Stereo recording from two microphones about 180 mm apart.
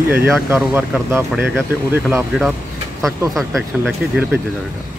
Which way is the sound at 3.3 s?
Centre (ahead or behind).